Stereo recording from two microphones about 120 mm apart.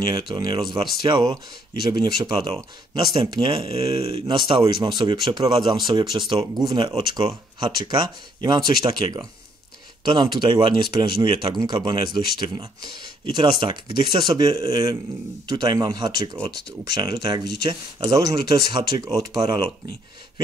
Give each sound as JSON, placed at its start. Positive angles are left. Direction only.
{"t": 0.1, "sound": "speech", "side_deg": -40}
{"t": 3.2, "sound": "speech", "side_deg": -50}
{"t": 4.3, "sound": "speech", "side_deg": -40}